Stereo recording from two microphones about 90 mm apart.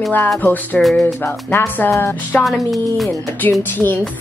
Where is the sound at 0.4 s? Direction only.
20° left (ahead or behind).